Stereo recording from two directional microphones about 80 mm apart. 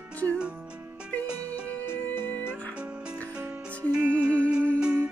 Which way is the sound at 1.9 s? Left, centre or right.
Left.